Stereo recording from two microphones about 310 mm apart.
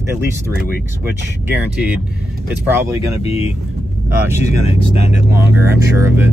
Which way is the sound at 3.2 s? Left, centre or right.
Centre.